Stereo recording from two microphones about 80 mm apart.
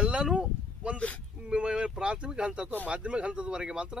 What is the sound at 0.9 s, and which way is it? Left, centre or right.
Speech, centre.